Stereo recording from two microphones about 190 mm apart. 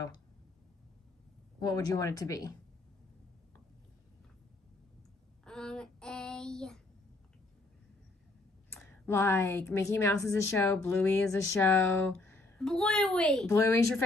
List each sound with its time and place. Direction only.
1.6 s speech: 20° left (ahead or behind)
5.4 s child singing: 5° left (ahead or behind)
8.7 s speech: 10° left (ahead or behind)